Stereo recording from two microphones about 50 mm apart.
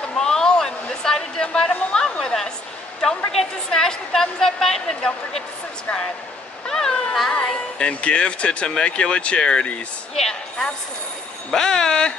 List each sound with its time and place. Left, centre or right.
0.1 s a sound: centre
3.3 s a woman's voice: centre
6.7 s speech: centre
11.5 s speech: centre